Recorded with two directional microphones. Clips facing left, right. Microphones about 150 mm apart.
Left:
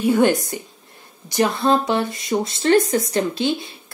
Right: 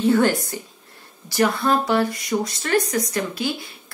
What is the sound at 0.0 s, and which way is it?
A woman's voice, 15° left (ahead or behind).